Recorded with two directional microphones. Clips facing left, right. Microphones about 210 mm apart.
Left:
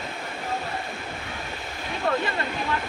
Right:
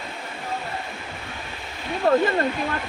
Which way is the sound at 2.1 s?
40° right (ahead or behind).